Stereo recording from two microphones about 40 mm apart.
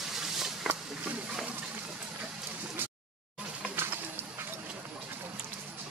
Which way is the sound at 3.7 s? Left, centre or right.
Right.